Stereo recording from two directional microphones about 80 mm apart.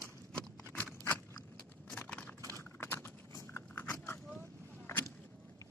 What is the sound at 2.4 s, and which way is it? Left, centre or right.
Clip-clop, right.